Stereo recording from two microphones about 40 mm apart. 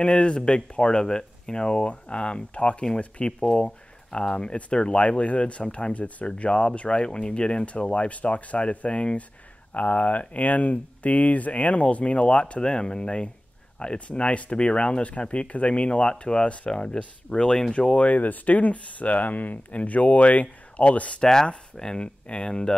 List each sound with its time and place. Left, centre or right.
0.0 s speech: left
17.7 s speech: left
18.1 s speech: left
21.2 s speech: centre
22.0 s speech: left